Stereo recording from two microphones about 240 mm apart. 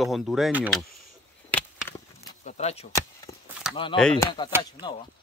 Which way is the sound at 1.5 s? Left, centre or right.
Centre.